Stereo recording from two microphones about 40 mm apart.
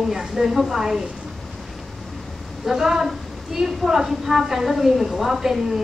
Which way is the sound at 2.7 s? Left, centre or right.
Centre.